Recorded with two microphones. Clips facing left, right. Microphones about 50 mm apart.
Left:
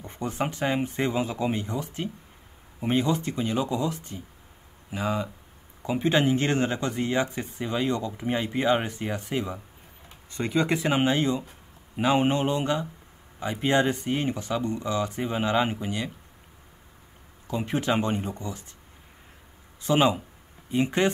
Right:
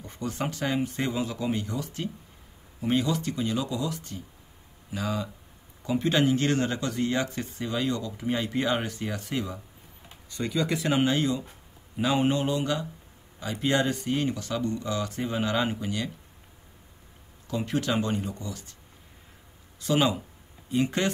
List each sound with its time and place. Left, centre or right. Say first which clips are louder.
0.0 s speech: left 2 dB; left
10.3 s speech: left 3 dB; left
17.5 s speech: left 2 dB; left
19.8 s speech: left 3 dB; left